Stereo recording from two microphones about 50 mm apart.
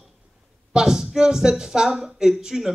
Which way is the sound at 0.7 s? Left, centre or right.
Centre.